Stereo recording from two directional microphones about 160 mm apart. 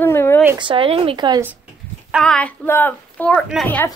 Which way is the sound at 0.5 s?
35° right (ahead or behind).